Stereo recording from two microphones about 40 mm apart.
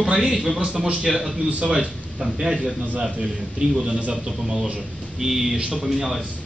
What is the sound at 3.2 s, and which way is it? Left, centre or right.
A man's voice, right.